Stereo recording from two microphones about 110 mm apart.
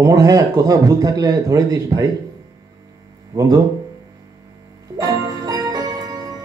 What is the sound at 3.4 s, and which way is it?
Speech, 30° right (ahead or behind).